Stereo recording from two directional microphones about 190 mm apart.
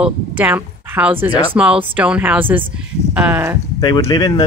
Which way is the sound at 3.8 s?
25° left (ahead or behind).